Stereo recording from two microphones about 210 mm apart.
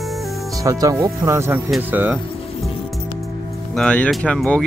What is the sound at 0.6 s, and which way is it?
Speech, 15° right (ahead or behind).